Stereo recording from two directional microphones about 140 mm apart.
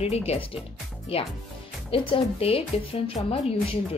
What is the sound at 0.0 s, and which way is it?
Speech, 45° left (ahead or behind).